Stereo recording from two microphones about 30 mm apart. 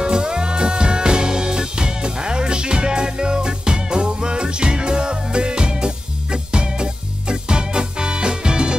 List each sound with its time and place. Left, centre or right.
0.0 s music: right